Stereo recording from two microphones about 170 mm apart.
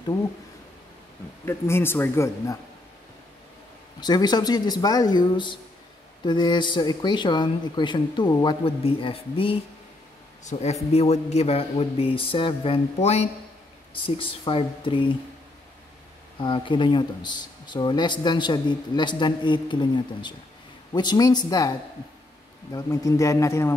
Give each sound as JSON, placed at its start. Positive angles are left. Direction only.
{"t": 1.4, "sound": "speech", "side_deg": 15}
{"t": 4.0, "sound": "speech", "side_deg": 25}
{"t": 8.6, "sound": "a man's voice", "side_deg": 35}
{"t": 16.3, "sound": "speech", "side_deg": 30}